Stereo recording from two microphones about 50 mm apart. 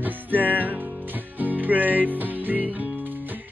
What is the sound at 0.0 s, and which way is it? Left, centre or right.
Music, right.